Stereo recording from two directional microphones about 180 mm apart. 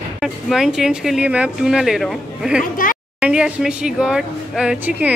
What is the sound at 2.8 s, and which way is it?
Speech, 50° left (ahead or behind).